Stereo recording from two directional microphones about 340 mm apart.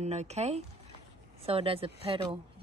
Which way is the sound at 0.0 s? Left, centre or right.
Centre.